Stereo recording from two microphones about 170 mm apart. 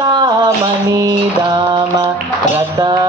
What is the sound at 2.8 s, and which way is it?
Mantra, 25° right (ahead or behind).